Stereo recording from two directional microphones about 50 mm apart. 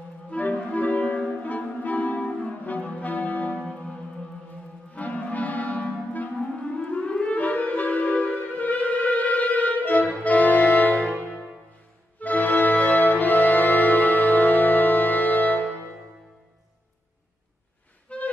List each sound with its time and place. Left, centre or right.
0.3 s clarinet: left
1.4 s music: left
4.9 s clarinet: left
6.9 s music: left
12.2 s music: left
18.1 s music: left